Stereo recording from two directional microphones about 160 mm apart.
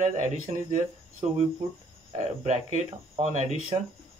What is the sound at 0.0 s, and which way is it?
Speech, 50° right (ahead or behind).